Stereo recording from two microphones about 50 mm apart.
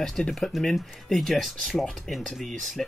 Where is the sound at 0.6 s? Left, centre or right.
Centre.